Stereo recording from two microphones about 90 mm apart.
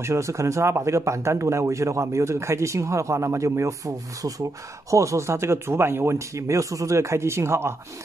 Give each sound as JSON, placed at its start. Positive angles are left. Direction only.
{"t": 0.0, "sound": "speech", "side_deg": -35}